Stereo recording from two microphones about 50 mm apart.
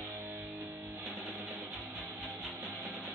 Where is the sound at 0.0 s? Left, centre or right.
Right.